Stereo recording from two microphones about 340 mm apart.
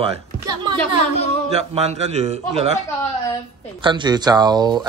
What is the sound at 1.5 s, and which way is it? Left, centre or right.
A man's voice, centre.